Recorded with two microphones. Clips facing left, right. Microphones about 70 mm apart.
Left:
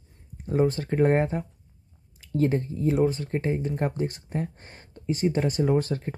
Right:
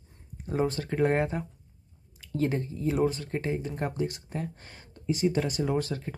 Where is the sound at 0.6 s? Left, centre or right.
Left.